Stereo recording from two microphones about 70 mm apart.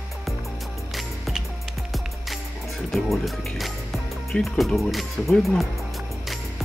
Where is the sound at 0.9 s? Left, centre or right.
Centre.